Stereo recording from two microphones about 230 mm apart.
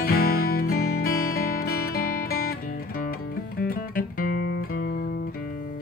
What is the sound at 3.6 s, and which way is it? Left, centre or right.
Music, left.